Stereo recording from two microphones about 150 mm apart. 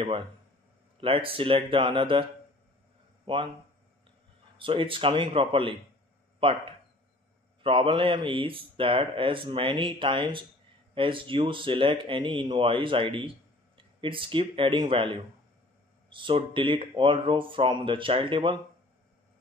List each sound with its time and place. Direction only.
1.0 s a man's voice: 35° right (ahead or behind)
3.3 s a man's voice: 35° right (ahead or behind)
4.6 s a man's voice: 35° right (ahead or behind)